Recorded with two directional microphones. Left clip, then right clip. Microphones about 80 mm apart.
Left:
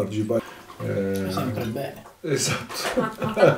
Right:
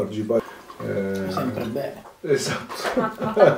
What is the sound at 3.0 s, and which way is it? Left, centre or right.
Speech, left.